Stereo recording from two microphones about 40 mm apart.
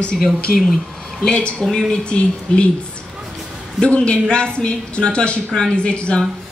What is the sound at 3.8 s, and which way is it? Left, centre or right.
Speech, left.